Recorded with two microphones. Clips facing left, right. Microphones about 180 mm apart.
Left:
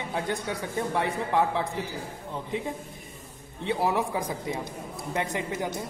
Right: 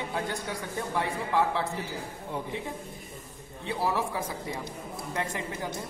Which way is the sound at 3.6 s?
20° left (ahead or behind).